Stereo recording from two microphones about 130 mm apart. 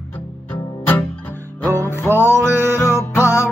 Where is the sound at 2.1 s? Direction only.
20° right (ahead or behind).